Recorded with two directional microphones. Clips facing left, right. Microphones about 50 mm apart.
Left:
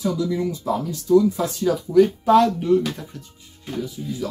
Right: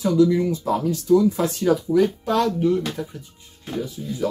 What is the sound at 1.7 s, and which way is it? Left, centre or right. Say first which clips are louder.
Speech: right 6 dB; right.